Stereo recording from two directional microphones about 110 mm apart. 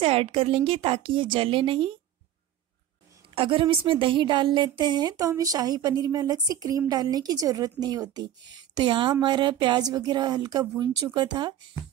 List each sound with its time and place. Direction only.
0.0 s a woman's voice: 60° right (ahead or behind)
3.3 s a woman's voice: 50° right (ahead or behind)